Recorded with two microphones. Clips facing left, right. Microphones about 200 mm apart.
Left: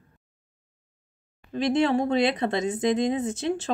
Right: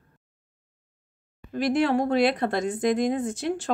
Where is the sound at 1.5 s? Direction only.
25° left (ahead or behind).